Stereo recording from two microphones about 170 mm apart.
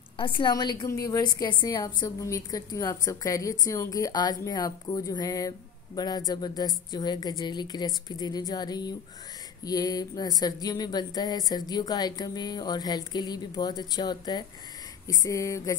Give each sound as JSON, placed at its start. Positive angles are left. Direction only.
{"t": 0.2, "sound": "a woman's voice", "side_deg": 30}